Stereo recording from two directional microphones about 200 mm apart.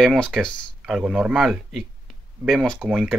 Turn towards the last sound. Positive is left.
turn(degrees=0)  # may be behind; listen again after turning